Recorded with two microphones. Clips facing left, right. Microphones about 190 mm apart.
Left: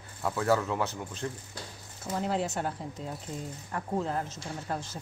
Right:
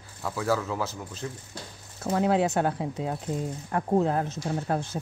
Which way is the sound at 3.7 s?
50° right (ahead or behind).